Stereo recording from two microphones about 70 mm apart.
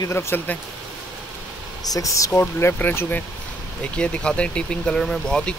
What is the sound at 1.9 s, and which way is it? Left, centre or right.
Speech, left.